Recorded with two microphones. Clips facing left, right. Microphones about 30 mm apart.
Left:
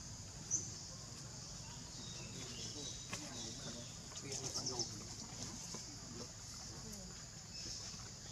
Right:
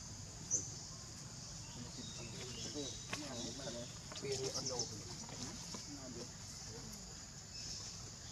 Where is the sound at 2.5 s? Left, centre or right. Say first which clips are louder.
Right 5 dB; centre.